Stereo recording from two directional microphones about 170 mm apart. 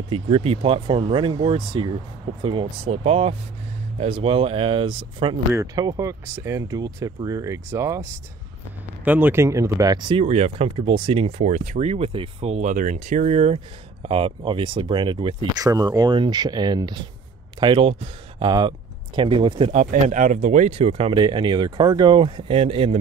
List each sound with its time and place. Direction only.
0.1 s speech: 35° right (ahead or behind)
5.5 s speech: 20° right (ahead or behind)
19.7 s speech: 50° right (ahead or behind)